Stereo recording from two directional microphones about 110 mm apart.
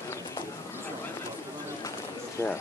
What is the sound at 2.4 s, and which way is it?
Speech, 25° left (ahead or behind).